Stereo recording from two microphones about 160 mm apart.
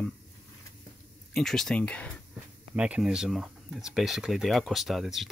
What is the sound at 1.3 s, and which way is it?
Speech, 5° left (ahead or behind).